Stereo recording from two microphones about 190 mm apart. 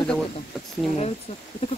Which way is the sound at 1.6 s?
30° left (ahead or behind).